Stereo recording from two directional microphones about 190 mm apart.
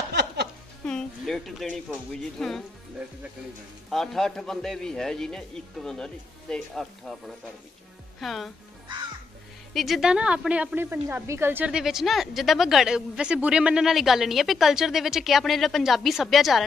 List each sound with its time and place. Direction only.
0.1 s music: 60° right (ahead or behind)
0.8 s a sound: 5° left (ahead or behind)
1.9 s a woman's voice: centre (ahead or behind)
3.9 s a woman's voice: centre (ahead or behind)
8.2 s a woman's voice: centre (ahead or behind)
9.8 s a woman's voice: centre (ahead or behind)